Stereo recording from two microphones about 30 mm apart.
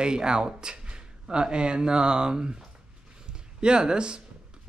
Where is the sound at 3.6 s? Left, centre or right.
Right.